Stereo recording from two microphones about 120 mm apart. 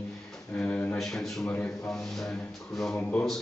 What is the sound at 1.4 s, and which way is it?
A man's voice, 15° left (ahead or behind).